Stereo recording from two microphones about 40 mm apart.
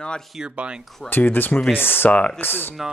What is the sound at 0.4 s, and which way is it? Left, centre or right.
Speech, right.